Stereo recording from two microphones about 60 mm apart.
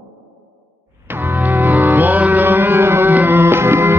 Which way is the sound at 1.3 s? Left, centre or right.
Right.